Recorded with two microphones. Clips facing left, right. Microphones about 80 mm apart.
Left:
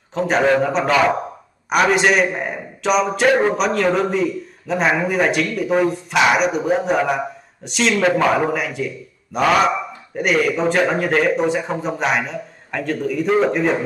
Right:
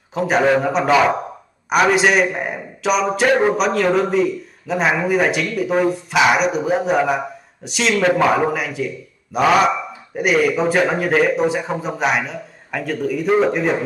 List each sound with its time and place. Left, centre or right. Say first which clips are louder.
0.1 s a man's voice: right 1 dB; centre